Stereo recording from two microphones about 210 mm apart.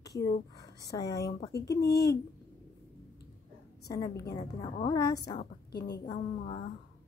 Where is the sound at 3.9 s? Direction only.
15° left (ahead or behind).